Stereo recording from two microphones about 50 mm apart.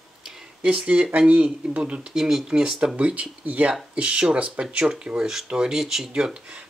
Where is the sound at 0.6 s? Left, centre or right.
Right.